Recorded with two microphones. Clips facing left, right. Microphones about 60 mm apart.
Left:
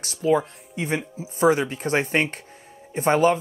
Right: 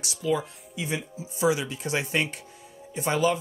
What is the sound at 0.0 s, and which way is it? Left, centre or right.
Speech, left.